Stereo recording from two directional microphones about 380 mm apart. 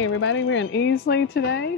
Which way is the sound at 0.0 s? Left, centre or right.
Left.